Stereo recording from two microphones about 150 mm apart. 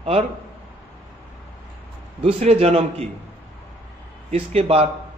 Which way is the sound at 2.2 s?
45° right (ahead or behind).